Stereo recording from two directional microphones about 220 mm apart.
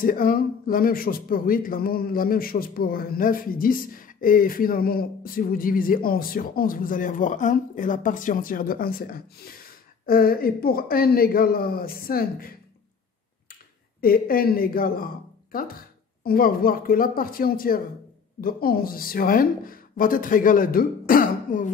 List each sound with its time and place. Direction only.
0.0 s speech: 40° left (ahead or behind)
14.0 s speech: 40° left (ahead or behind)